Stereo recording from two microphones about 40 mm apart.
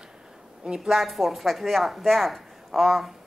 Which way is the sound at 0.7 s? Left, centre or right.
Centre.